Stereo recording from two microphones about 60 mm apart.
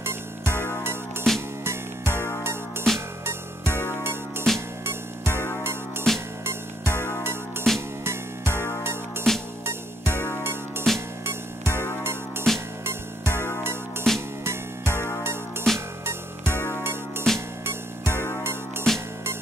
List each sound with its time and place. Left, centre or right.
0.0 s music: right
1.3 s music: centre
1.6 s music: right
2.9 s music: centre
3.3 s music: right
7.7 s music: centre
8.0 s music: right
9.3 s music: centre
9.7 s music: right
14.1 s music: centre
14.4 s music: right
17.3 s music: centre
17.6 s music: right
18.9 s music: centre